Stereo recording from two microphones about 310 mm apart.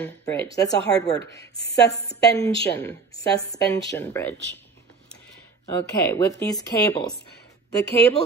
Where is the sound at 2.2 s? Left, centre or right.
Centre.